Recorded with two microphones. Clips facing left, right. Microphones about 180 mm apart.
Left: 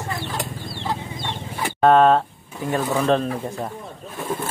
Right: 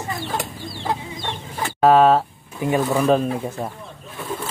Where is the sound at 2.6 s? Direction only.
10° right (ahead or behind).